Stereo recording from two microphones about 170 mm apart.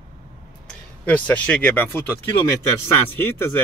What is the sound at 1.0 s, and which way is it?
Speech, 10° left (ahead or behind).